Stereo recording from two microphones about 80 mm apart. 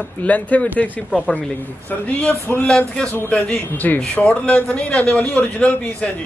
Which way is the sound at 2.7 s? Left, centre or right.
Centre.